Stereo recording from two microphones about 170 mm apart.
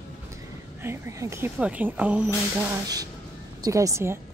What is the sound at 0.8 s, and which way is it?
A woman's voice, 15° right (ahead or behind).